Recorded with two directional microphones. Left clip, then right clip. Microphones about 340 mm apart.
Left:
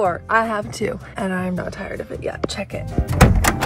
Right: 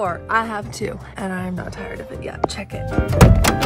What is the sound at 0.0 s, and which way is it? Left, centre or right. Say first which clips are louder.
Speech: left 2 dB; centre.